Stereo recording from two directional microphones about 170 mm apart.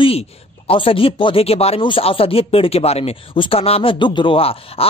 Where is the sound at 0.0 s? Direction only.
35° left (ahead or behind).